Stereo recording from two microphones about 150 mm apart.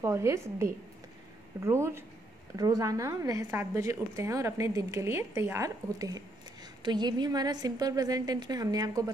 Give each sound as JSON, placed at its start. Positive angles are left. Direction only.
{"t": 0.0, "sound": "speech", "side_deg": -20}